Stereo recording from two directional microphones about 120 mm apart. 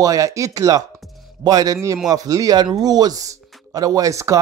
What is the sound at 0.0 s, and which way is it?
Speech, 30° right (ahead or behind).